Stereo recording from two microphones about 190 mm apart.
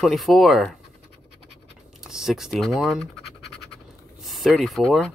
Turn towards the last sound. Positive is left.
turn(degrees=0)  # may be behind; listen again after turning